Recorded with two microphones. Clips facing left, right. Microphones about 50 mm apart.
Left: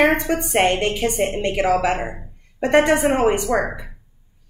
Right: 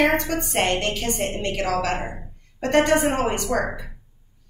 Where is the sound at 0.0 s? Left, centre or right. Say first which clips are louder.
Left 3 dB; centre.